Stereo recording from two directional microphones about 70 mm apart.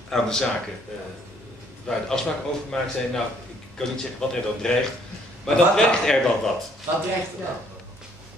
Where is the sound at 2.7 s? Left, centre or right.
Centre.